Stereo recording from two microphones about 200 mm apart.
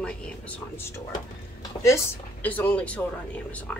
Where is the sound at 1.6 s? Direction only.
15° left (ahead or behind).